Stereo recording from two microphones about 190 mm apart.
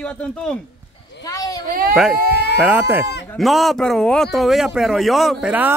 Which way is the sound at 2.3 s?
60° left (ahead or behind).